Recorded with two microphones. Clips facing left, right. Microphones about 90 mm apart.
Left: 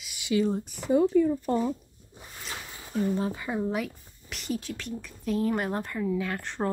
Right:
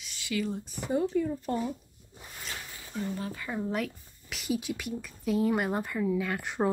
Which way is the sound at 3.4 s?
10° left (ahead or behind).